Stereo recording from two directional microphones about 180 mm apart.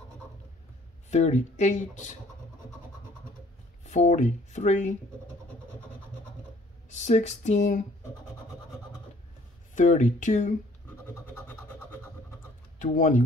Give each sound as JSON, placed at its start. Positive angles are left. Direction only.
{"t": 1.1, "sound": "speech", "side_deg": 40}
{"t": 3.8, "sound": "speech", "side_deg": 40}
{"t": 7.0, "sound": "speech", "side_deg": 40}
{"t": 9.8, "sound": "speech", "side_deg": 45}
{"t": 12.7, "sound": "speech", "side_deg": 45}